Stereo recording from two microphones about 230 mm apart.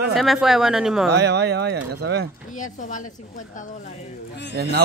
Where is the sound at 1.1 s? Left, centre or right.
Right.